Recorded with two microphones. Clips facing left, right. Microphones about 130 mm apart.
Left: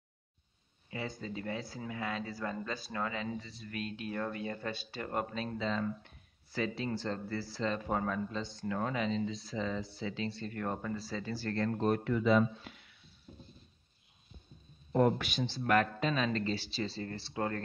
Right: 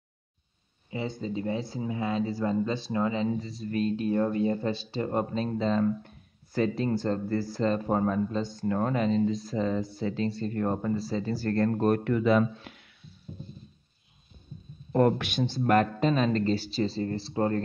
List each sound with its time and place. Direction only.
0.8 s speech: 25° right (ahead or behind)
3.3 s speech: 40° right (ahead or behind); by 12.8 s 65° right (ahead or behind)
14.9 s speech: 65° right (ahead or behind); by 17.6 s 30° right (ahead or behind)